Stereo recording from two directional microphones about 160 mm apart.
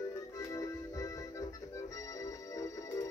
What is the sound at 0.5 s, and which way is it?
Music, 20° left (ahead or behind).